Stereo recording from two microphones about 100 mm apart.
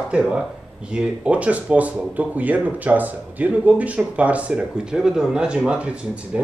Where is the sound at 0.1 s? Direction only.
10° right (ahead or behind).